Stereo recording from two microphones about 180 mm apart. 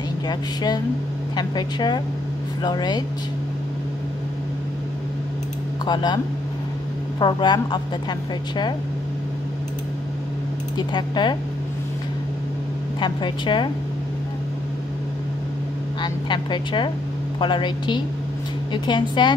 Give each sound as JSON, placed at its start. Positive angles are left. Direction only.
{"t": 0.3, "sound": "a woman's voice", "side_deg": 20}
{"t": 5.9, "sound": "a woman's voice", "side_deg": 25}
{"t": 10.8, "sound": "a woman's voice", "side_deg": 25}
{"t": 13.0, "sound": "a woman's voice", "side_deg": 25}
{"t": 16.0, "sound": "a woman's voice", "side_deg": 25}